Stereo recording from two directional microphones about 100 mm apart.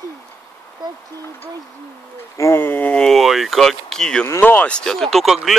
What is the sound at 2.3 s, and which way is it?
Speech, 25° left (ahead or behind).